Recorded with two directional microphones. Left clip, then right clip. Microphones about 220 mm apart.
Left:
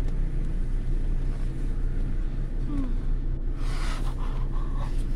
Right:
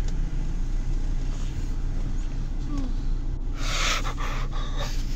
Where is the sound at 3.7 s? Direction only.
20° right (ahead or behind).